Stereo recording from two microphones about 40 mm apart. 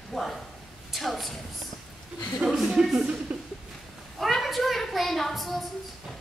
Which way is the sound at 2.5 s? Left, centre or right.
Centre.